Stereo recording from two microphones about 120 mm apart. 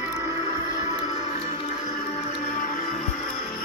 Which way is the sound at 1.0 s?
65° left (ahead or behind).